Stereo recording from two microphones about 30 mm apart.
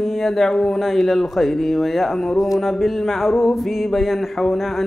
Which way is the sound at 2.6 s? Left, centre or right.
Centre.